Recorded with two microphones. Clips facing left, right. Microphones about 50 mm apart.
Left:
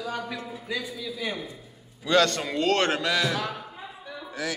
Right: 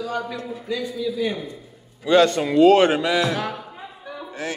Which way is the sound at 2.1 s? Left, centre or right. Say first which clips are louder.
Right 6 dB; centre.